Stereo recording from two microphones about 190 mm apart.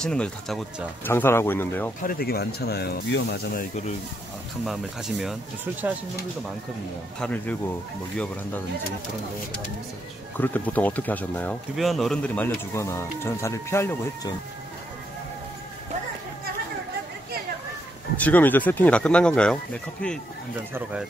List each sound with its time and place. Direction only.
0.0 s speech: 5° left (ahead or behind)
1.1 s speech: 10° left (ahead or behind)
2.0 s speech: 50° left (ahead or behind); by 3.3 s 65° left (ahead or behind)
3.5 s speech: 40° left (ahead or behind)
4.6 s speech: centre (ahead or behind)
7.2 s speech: 5° left (ahead or behind)
10.3 s speech: 10° left (ahead or behind)
18.2 s speech: 10° left (ahead or behind)